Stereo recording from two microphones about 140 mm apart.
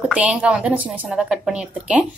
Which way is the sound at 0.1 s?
10° right (ahead or behind).